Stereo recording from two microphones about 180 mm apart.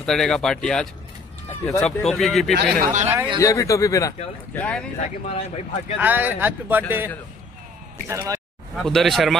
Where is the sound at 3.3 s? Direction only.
20° left (ahead or behind).